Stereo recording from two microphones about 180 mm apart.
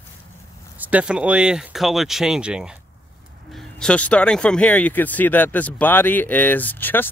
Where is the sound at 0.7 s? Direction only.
10° right (ahead or behind).